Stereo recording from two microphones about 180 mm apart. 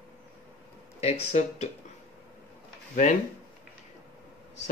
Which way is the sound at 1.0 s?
40° left (ahead or behind).